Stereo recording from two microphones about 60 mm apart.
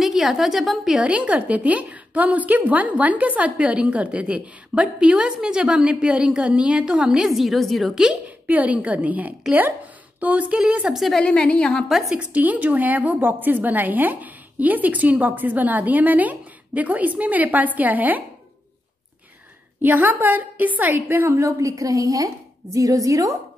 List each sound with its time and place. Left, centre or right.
0.0 s a woman's voice: centre
0.9 s a woman's voice: centre
8.5 s a woman's voice: right
10.9 s a woman's voice: centre
11.2 s a woman's voice: centre
12.2 s a woman's voice: right
19.8 s a woman's voice: right
21.4 s a woman's voice: right